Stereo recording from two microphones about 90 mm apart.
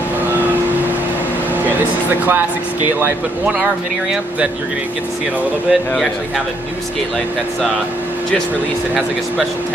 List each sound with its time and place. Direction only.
2.0 s speech: 20° right (ahead or behind)
5.7 s a man's voice: centre (ahead or behind)